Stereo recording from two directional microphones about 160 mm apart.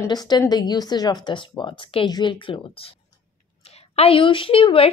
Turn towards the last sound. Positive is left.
turn(degrees=35)  # may be behind; listen again after turning